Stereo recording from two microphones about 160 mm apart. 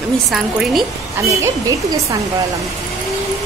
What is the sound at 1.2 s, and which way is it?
Speech, 20° right (ahead or behind).